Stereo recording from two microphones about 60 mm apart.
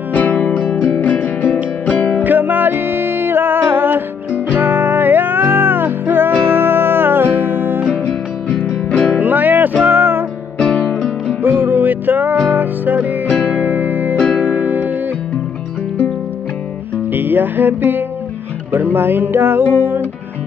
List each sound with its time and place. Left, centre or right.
0.1 s music: left
2.2 s music: right
8.9 s music: centre
9.2 s music: right
10.6 s music: centre
10.9 s music: centre
11.4 s music: right
17.1 s music: right